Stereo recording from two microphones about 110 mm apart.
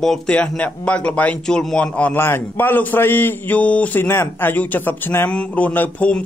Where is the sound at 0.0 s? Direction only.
5° left (ahead or behind).